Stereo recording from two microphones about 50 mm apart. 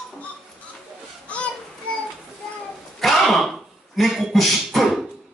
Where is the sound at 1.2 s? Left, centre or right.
Left.